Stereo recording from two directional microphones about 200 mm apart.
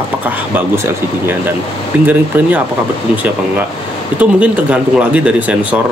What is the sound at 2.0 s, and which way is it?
Speech, 10° right (ahead or behind).